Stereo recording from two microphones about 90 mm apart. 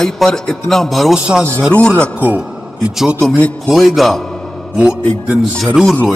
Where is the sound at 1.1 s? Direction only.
10° right (ahead or behind).